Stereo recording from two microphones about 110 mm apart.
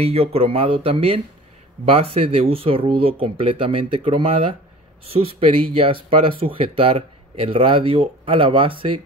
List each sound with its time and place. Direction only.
0.0 s speech: 65° right (ahead or behind)